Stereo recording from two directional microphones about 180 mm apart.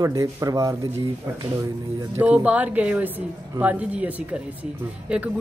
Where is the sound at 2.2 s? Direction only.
10° right (ahead or behind).